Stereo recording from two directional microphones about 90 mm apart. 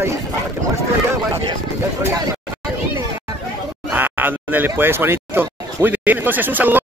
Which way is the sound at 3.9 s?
20° right (ahead or behind).